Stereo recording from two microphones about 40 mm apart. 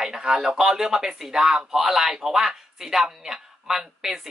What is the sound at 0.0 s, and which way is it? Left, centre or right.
Speech, centre.